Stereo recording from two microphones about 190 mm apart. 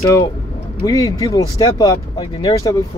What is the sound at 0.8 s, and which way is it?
Speech, 20° left (ahead or behind).